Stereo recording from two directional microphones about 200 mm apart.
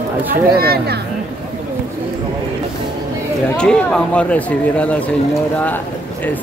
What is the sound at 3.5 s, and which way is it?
Speech, 5° left (ahead or behind).